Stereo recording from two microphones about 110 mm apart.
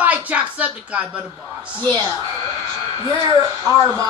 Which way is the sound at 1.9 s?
35° right (ahead or behind).